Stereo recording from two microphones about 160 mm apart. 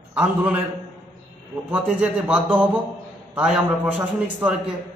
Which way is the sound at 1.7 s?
10° right (ahead or behind).